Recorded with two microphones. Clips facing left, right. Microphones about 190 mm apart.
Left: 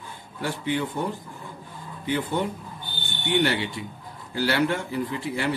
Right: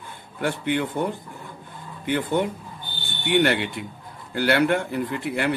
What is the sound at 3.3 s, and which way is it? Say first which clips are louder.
Speech: right 3 dB; 60° right (ahead or behind).